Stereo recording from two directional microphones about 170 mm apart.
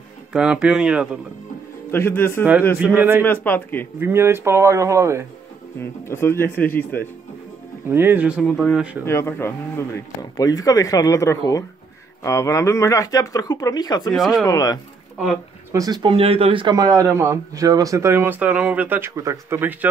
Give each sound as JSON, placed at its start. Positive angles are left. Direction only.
{"t": 0.3, "sound": "speech", "side_deg": -5}
{"t": 1.9, "sound": "speech", "side_deg": 15}
{"t": 2.8, "sound": "speech", "side_deg": -10}
{"t": 3.3, "sound": "speech", "side_deg": 10}
{"t": 4.0, "sound": "speech", "side_deg": -15}
{"t": 5.8, "sound": "speech", "side_deg": 15}
{"t": 7.9, "sound": "speech", "side_deg": -10}
{"t": 9.0, "sound": "speech", "side_deg": 15}
{"t": 14.1, "sound": "speech", "side_deg": 0}
{"t": 14.4, "sound": "speech", "side_deg": 20}
{"t": 15.7, "sound": "a man's voice", "side_deg": -20}